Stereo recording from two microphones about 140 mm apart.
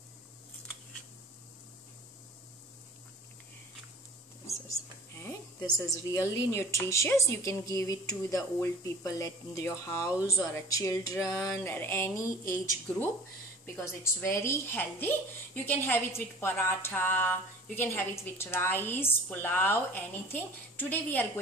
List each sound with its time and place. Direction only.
5.1 s a woman's voice: 20° left (ahead or behind)